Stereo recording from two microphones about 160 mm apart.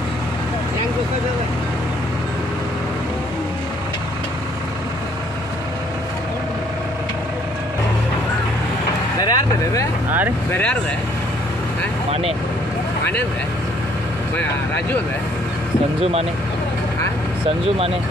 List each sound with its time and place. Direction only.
9.2 s vehicle: 25° left (ahead or behind)
10.5 s speech: 10° left (ahead or behind)
12.1 s speech: 40° right (ahead or behind)
16.0 s speech: 40° right (ahead or behind)